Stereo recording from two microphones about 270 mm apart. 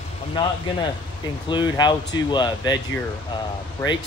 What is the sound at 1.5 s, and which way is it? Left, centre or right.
Speech, centre.